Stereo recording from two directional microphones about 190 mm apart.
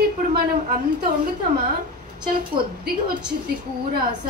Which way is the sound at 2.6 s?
25° right (ahead or behind).